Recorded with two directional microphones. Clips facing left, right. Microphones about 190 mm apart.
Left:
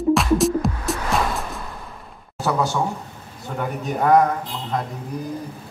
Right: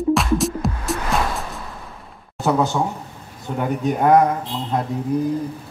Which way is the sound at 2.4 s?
20° right (ahead or behind).